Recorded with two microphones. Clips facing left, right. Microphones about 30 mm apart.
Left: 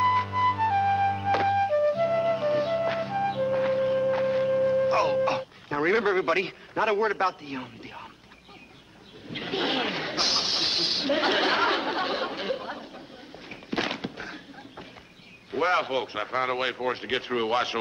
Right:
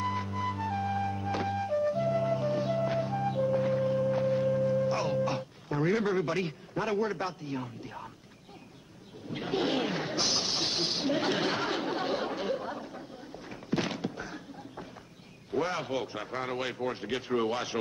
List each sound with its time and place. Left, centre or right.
0.0 s music: left
9.3 s snake: left
13.5 s a sound: left
15.5 s a man's voice: left